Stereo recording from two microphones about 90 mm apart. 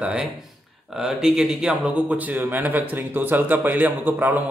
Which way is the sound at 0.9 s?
5° right (ahead or behind).